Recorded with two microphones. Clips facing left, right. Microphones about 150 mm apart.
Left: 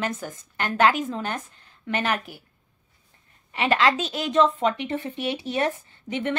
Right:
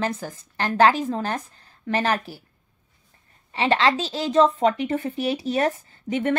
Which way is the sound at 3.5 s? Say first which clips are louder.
Right 1 dB; 30° right (ahead or behind).